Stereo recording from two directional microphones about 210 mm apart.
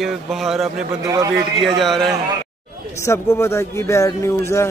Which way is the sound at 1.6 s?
Centre (ahead or behind).